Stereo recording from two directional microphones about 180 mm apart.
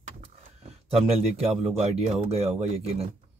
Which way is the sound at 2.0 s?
35° right (ahead or behind).